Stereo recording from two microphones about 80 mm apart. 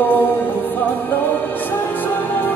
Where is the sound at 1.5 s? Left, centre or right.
Left.